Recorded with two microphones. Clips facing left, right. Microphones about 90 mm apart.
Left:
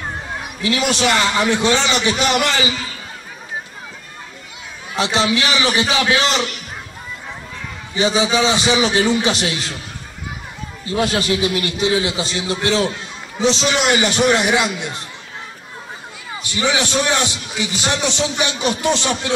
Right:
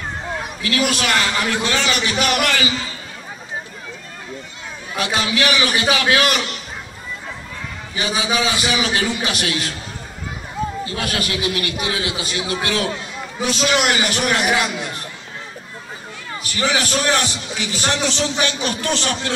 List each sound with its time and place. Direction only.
0.6 s a man's voice: 25° left (ahead or behind)
4.9 s a man's voice: 25° left (ahead or behind)
8.4 s a man's voice: 25° left (ahead or behind)
10.9 s a man's voice: 25° left (ahead or behind)
16.4 s a man's voice: 20° left (ahead or behind)